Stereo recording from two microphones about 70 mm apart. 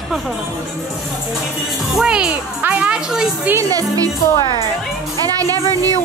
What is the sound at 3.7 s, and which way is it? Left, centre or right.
Speech, right.